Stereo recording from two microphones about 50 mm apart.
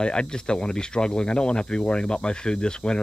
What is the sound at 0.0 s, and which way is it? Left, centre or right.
Speech, centre.